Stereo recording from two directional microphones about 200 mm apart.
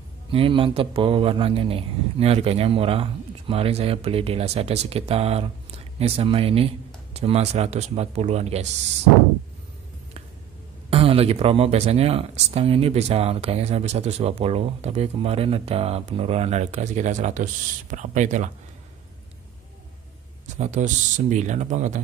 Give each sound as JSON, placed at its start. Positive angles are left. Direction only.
{"t": 0.3, "sound": "a man's voice", "side_deg": -25}
{"t": 10.9, "sound": "speech", "side_deg": -30}
{"t": 20.4, "sound": "speech", "side_deg": -35}